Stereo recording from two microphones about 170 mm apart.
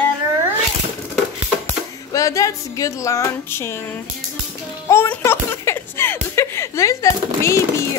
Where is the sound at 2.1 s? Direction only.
20° left (ahead or behind).